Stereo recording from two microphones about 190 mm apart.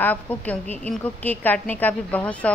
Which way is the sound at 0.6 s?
35° right (ahead or behind).